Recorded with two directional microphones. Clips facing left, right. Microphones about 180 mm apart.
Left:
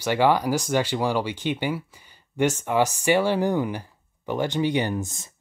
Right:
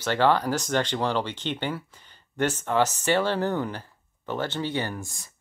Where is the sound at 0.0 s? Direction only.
10° left (ahead or behind).